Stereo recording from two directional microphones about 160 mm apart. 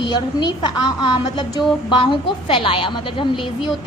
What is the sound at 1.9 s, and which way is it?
A woman's voice, 30° left (ahead or behind).